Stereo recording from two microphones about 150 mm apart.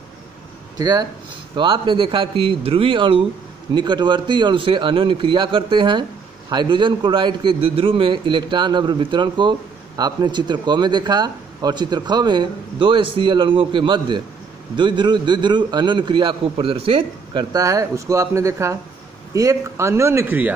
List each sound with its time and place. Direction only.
0.7 s a man's voice: 25° right (ahead or behind)